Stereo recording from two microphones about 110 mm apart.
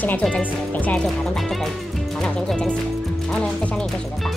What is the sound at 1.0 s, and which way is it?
Speech, centre (ahead or behind).